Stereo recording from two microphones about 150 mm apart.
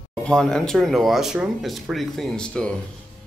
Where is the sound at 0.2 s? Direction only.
5° left (ahead or behind).